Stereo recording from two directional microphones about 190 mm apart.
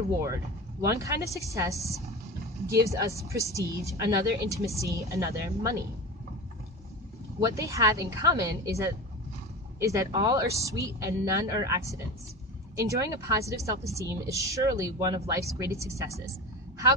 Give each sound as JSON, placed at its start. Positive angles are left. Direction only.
{"t": 0.7, "sound": "a woman's voice", "side_deg": -15}
{"t": 7.3, "sound": "a woman's voice", "side_deg": -15}